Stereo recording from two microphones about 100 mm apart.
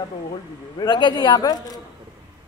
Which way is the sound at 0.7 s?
50° left (ahead or behind).